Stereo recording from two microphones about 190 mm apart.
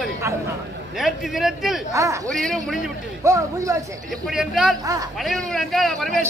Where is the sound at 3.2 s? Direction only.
15° right (ahead or behind).